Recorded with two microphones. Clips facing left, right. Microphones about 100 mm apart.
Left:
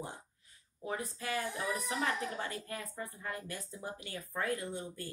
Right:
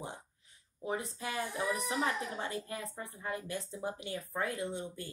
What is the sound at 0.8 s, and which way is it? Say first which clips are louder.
A woman's voice: right 1 dB; 20° right (ahead or behind).